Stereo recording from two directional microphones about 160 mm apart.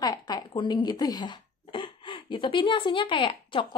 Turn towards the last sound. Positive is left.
turn(degrees=35)  # may be behind; listen again after turning